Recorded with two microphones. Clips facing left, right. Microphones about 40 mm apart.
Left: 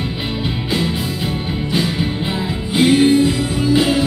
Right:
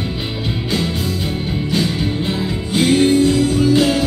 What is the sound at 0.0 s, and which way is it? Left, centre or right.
Music, centre.